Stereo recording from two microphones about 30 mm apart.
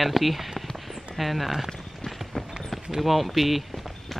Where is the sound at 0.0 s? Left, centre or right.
Centre.